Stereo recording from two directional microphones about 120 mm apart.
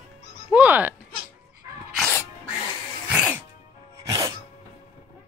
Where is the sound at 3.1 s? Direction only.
10° right (ahead or behind).